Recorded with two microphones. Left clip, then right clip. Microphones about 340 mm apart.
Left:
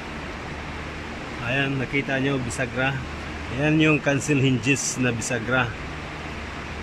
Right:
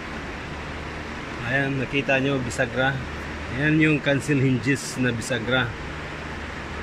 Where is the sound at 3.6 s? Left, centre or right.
Left.